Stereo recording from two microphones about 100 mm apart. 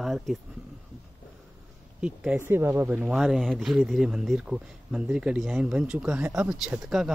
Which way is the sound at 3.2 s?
Centre (ahead or behind).